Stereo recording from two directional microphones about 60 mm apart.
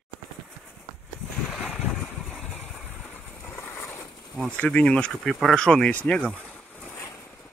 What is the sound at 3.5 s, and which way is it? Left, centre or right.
Vehicle, left.